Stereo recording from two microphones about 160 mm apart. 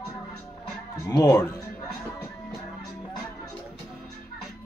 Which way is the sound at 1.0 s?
25° left (ahead or behind).